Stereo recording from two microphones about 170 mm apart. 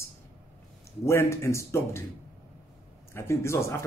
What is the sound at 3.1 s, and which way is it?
Speech, 15° left (ahead or behind).